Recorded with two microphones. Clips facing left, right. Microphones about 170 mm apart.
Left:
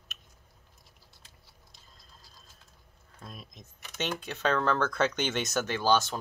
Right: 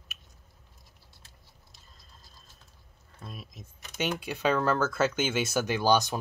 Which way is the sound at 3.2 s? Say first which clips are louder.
Right 2 dB; 5° right (ahead or behind).